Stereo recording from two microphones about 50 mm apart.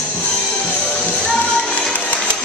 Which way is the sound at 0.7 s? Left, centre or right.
Centre.